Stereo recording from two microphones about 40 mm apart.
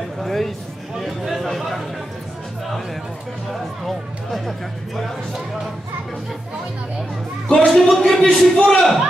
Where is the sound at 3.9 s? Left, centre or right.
Centre.